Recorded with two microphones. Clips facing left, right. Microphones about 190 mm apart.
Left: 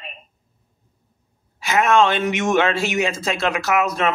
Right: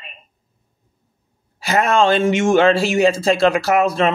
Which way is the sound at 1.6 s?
35° right (ahead or behind).